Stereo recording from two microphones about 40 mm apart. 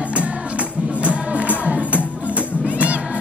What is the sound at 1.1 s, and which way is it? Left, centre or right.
Music, right.